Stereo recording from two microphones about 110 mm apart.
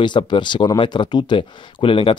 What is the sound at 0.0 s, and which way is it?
Speech, 45° left (ahead or behind).